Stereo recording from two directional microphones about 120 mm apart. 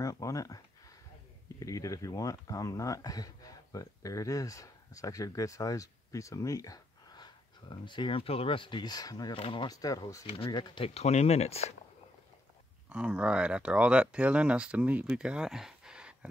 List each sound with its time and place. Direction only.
0.0 s speech: 25° left (ahead or behind)
1.6 s speech: 25° left (ahead or behind)
9.4 s speech: 45° left (ahead or behind)
9.7 s speech: 30° left (ahead or behind)
10.3 s speech: 45° left (ahead or behind)
11.0 s speech: 65° left (ahead or behind)
12.9 s speech: 10° right (ahead or behind)